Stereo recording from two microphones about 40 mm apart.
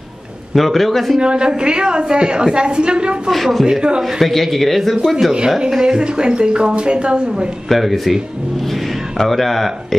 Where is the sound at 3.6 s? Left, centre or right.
Centre.